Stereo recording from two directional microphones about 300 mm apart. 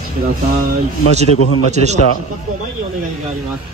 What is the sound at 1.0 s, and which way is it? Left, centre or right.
Speech, left.